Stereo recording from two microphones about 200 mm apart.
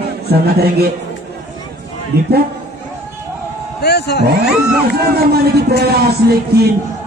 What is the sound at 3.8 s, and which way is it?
Speech, 55° left (ahead or behind).